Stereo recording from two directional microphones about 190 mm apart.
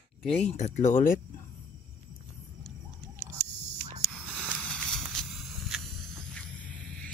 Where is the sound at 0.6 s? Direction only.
40° left (ahead or behind).